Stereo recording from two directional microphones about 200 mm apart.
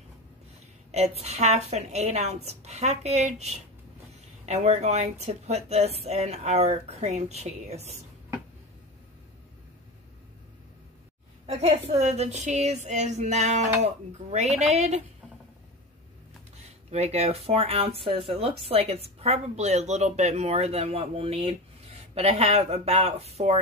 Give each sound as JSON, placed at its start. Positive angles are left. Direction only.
{"t": 0.9, "sound": "a woman's voice", "side_deg": -35}
{"t": 11.4, "sound": "a woman's voice", "side_deg": -30}
{"t": 16.6, "sound": "a woman's voice", "side_deg": -35}